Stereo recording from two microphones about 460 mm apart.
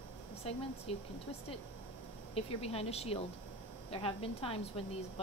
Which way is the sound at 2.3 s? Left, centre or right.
Centre.